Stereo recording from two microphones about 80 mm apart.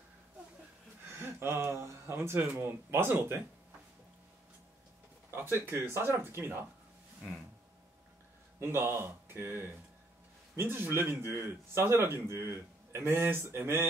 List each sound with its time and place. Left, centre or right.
1.2 s speech: right
5.3 s a man's voice: right
8.5 s a man's voice: right